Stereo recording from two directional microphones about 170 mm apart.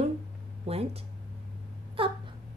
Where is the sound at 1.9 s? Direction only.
30° right (ahead or behind).